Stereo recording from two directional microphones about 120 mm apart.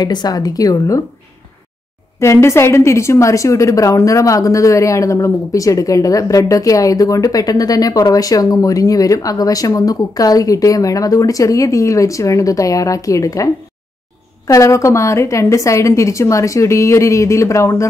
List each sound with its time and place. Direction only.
0.0 s a woman's voice: 35° left (ahead or behind)
2.1 s a woman's voice: 25° left (ahead or behind)
14.5 s a woman's voice: 25° left (ahead or behind)